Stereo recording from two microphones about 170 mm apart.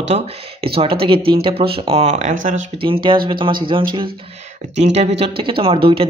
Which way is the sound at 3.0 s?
30° right (ahead or behind).